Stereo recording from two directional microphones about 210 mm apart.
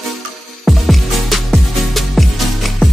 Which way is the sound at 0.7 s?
Centre (ahead or behind).